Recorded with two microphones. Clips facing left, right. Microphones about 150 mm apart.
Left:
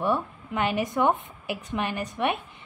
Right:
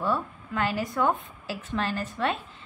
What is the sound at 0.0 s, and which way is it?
A woman's voice, 20° left (ahead or behind).